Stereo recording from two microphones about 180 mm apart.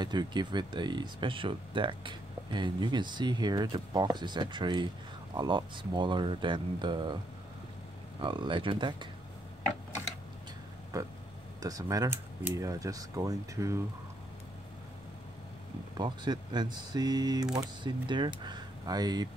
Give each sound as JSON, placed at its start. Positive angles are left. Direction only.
{"t": 0.0, "sound": "speech", "side_deg": -25}
{"t": 8.2, "sound": "speech", "side_deg": -25}
{"t": 10.9, "sound": "speech", "side_deg": -20}
{"t": 16.0, "sound": "speech", "side_deg": -25}